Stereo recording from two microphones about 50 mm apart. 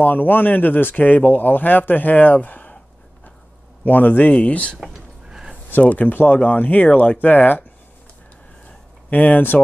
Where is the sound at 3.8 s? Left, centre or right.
Left.